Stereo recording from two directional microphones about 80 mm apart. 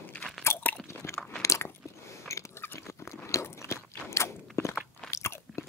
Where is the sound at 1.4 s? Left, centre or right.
Left.